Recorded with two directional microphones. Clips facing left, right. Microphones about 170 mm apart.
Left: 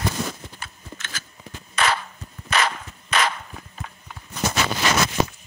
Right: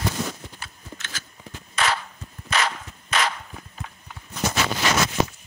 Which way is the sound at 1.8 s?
55° left (ahead or behind).